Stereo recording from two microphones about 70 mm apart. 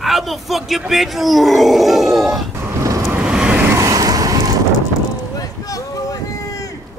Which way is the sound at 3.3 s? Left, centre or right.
Centre.